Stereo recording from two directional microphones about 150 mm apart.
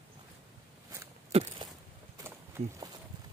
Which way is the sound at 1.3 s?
45° right (ahead or behind).